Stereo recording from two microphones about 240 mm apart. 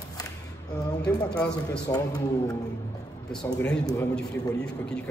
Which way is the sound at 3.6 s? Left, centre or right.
Centre.